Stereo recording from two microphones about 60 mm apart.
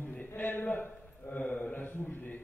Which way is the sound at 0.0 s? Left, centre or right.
Left.